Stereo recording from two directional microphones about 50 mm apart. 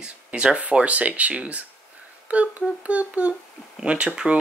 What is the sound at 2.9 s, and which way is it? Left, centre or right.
Speech, right.